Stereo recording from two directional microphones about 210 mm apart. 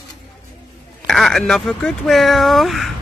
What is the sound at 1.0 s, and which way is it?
Speech, centre (ahead or behind).